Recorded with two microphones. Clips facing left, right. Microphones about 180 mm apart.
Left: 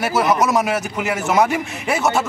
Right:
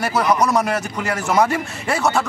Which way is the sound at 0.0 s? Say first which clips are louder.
Left 1 dB; centre (ahead or behind).